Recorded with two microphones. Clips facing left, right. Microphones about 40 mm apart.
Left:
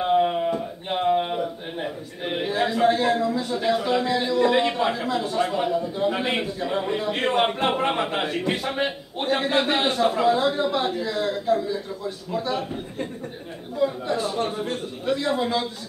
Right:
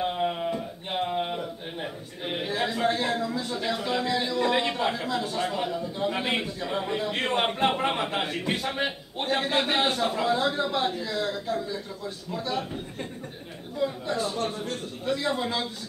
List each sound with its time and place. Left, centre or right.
0.0 s a man's voice: centre
15.1 s speech: centre